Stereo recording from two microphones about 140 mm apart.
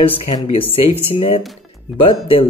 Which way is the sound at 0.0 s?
40° left (ahead or behind).